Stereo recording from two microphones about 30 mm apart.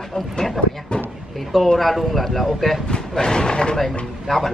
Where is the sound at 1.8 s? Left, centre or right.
Centre.